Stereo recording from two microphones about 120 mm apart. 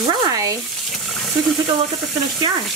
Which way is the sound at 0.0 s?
35° right (ahead or behind).